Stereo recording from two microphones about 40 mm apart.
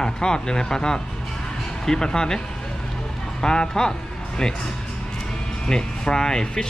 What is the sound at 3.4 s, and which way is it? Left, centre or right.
Speech, centre.